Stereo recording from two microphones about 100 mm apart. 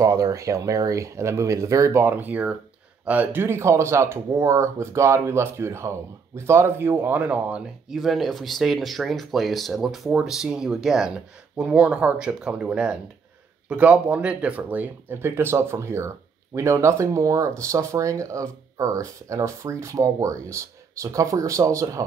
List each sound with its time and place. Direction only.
0.0 s speech: 35° right (ahead or behind); by 7.6 s 15° right (ahead or behind)
7.9 s speech: centre (ahead or behind); by 22.0 s 35° right (ahead or behind)